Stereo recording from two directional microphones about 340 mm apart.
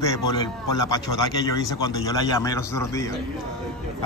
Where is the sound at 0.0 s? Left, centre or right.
Centre.